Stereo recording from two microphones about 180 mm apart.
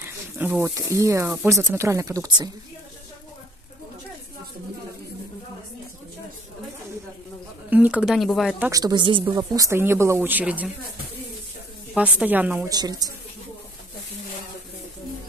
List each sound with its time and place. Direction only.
0.4 s speech: 10° right (ahead or behind)
7.7 s speech: 10° right (ahead or behind)
8.6 s speech: 20° right (ahead or behind)
11.9 s speech: 5° right (ahead or behind)
12.7 s a woman's voice: 20° right (ahead or behind)